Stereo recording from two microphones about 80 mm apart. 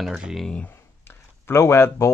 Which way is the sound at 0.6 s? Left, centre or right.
Left.